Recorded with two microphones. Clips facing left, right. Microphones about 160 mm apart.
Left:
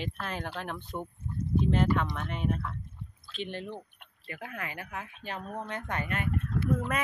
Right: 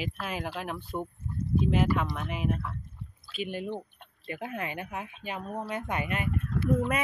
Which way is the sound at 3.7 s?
20° right (ahead or behind).